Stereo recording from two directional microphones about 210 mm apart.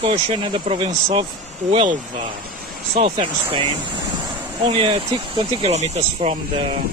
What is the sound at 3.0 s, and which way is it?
Speech, 25° right (ahead or behind).